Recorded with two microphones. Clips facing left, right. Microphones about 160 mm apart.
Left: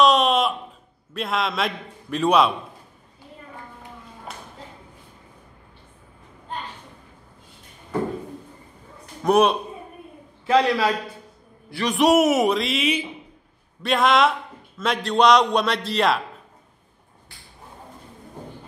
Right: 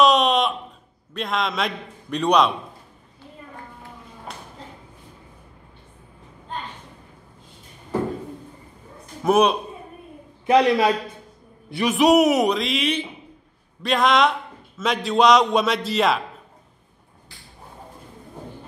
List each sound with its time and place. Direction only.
0.0 s a sound: centre (ahead or behind)
1.1 s a man's voice: centre (ahead or behind)
9.2 s a man's voice: centre (ahead or behind)
10.4 s a man's voice: 20° right (ahead or behind)
11.8 s a man's voice: centre (ahead or behind)